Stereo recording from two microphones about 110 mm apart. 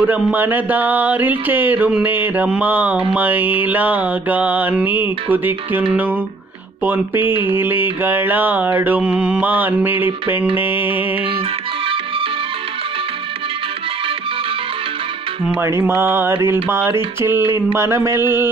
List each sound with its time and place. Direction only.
0.0 s mantra: 15° right (ahead or behind)
7.4 s mantra: 20° right (ahead or behind)
10.5 s speech: 20° right (ahead or behind)
15.6 s speech: 25° right (ahead or behind)